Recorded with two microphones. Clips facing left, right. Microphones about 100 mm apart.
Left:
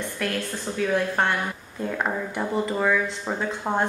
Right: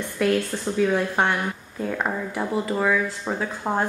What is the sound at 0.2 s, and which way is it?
Speech, 5° right (ahead or behind).